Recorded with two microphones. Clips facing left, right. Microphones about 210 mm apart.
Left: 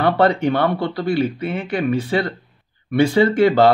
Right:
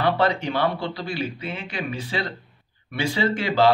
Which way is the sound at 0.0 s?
55° left (ahead or behind).